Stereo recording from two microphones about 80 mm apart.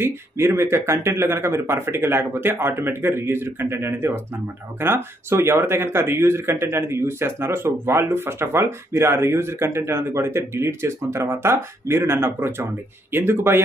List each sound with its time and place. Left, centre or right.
0.0 s speech: right